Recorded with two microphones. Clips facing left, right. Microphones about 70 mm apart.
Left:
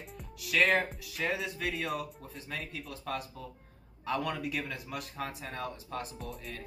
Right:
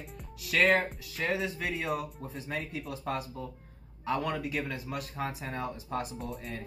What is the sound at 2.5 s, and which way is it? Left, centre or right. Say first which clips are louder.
Speech: right 4 dB; right.